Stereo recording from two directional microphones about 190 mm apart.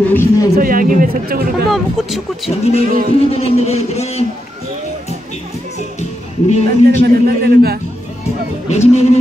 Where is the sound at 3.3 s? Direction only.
35° left (ahead or behind).